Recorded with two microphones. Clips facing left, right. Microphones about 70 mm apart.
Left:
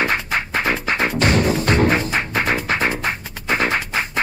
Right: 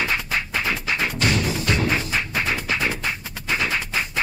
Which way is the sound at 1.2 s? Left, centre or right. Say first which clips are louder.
Left 6 dB; left.